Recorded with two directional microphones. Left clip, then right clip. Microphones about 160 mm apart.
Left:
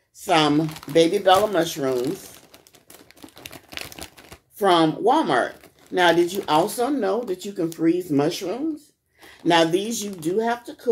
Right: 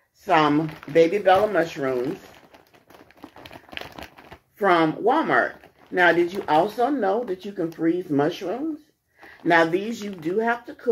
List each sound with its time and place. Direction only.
0.3 s speech: 15° left (ahead or behind)
4.6 s speech: 10° left (ahead or behind)
6.4 s speech: 25° left (ahead or behind)